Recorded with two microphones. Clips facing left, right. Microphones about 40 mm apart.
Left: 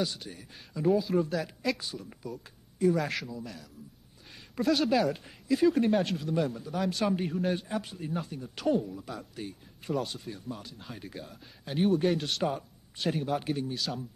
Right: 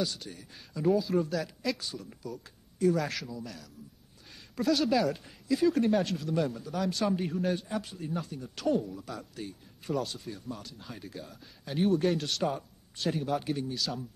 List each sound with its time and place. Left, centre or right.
0.0 s speech: centre
7.5 s speech: centre